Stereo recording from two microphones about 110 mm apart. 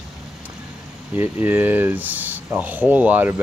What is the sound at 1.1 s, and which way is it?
Speech, 15° right (ahead or behind).